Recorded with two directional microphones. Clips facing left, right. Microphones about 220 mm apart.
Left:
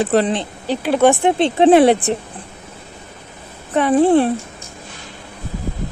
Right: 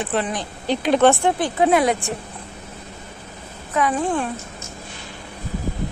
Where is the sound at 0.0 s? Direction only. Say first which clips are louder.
Left 8 dB; 35° left (ahead or behind).